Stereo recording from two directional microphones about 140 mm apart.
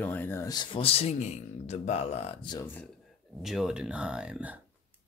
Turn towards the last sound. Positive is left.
turn(degrees=-10)  # may be behind; listen again after turning